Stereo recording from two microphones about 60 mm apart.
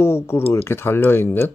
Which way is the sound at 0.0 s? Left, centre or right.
Left.